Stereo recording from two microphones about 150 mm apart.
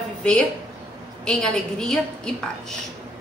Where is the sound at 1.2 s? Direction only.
5° left (ahead or behind).